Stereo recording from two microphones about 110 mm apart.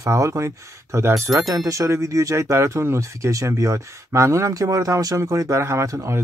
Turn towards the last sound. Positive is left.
turn(degrees=-30)  # may be behind; listen again after turning